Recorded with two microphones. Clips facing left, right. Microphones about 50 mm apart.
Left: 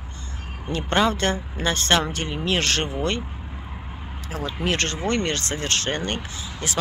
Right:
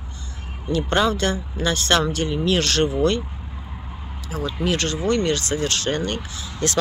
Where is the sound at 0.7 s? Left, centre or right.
Left.